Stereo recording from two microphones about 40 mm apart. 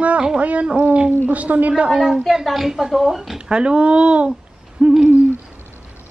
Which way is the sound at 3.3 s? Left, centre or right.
Right.